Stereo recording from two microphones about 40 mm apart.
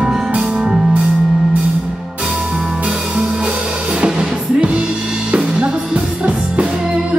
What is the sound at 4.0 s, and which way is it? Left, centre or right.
Music, right.